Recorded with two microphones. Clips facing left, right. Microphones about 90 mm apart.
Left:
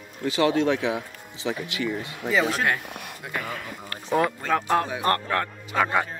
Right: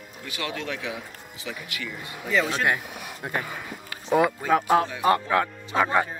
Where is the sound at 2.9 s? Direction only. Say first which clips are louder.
Even; 5° right (ahead or behind).